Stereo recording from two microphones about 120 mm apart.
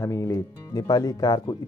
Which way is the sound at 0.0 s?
25° left (ahead or behind).